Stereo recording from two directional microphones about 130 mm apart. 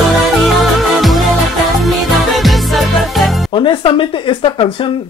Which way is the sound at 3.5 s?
40° left (ahead or behind).